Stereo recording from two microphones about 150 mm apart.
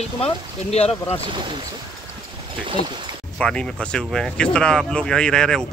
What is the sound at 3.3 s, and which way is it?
Speech, 5° left (ahead or behind).